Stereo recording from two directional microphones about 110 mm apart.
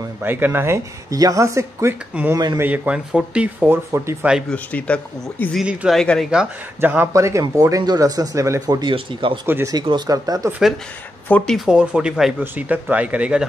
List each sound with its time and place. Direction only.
0.2 s speech: 20° right (ahead or behind)
1.1 s speech: 30° right (ahead or behind)
2.6 s speech: 15° right (ahead or behind)
3.6 s speech: 20° right (ahead or behind)
4.2 s speech: 10° right (ahead or behind)
4.5 s speech: 10° left (ahead or behind)
5.6 s speech: 5° right (ahead or behind)
5.9 s speech: 5° left (ahead or behind)
6.8 s speech: 20° right (ahead or behind); by 8.9 s 35° right (ahead or behind)
8.9 s speech: 50° right (ahead or behind)
10.0 s speech: 35° right (ahead or behind)
11.2 s speech: 15° left (ahead or behind)
11.5 s speech: 5° right (ahead or behind)